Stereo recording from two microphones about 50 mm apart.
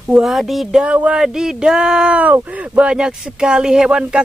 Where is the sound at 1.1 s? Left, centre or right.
Centre.